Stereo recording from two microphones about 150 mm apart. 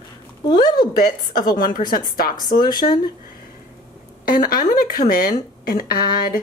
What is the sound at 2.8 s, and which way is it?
Speech, 55° left (ahead or behind).